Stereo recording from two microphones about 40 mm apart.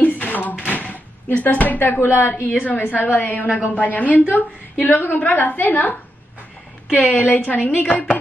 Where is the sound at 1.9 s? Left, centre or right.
Left.